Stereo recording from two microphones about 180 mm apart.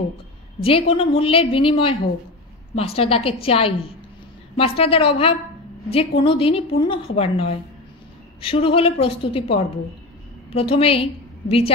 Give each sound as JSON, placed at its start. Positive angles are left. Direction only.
{"t": 0.6, "sound": "a woman's voice", "side_deg": 30}